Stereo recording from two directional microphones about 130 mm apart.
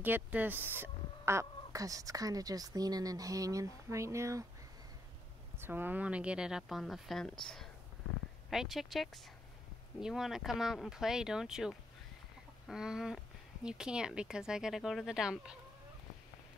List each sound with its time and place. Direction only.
0.0 s speech: 15° right (ahead or behind)
5.6 s speech: 15° right (ahead or behind)